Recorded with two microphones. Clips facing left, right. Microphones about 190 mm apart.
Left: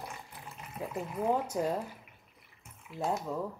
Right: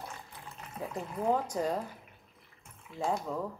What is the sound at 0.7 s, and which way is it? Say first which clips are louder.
Speech: left 1 dB; 5° left (ahead or behind).